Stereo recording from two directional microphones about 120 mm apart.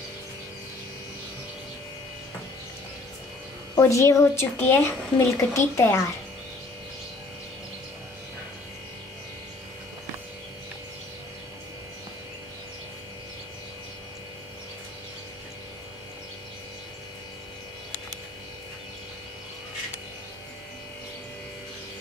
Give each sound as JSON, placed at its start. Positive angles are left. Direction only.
{"t": 3.7, "sound": "a woman's voice", "side_deg": 25}